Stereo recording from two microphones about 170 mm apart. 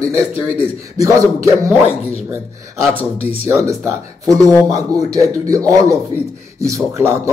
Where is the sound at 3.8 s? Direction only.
20° right (ahead or behind).